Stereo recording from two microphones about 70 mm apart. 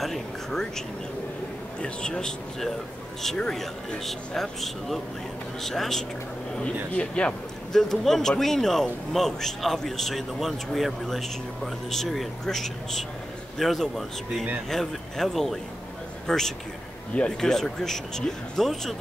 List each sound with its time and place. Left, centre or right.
0.0 s a sound: centre
1.8 s a man's voice: centre
6.9 s speech: centre
7.7 s a man's voice: centre